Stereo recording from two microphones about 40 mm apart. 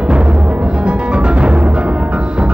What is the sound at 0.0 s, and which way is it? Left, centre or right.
Timpani, right.